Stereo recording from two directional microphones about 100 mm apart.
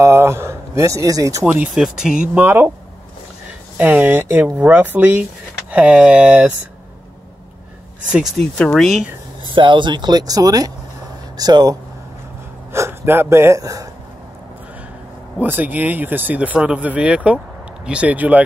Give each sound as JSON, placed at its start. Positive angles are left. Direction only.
{"t": 0.0, "sound": "speech", "side_deg": -25}
{"t": 1.4, "sound": "speech", "side_deg": -15}
{"t": 2.4, "sound": "speech", "side_deg": -20}
{"t": 3.7, "sound": "speech", "side_deg": -15}
{"t": 8.1, "sound": "speech", "side_deg": -5}
{"t": 9.5, "sound": "speech", "side_deg": -55}
{"t": 12.7, "sound": "speech", "side_deg": -25}
{"t": 15.3, "sound": "speech", "side_deg": -20}